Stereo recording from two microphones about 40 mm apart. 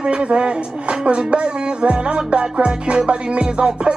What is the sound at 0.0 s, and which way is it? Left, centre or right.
Speech, right.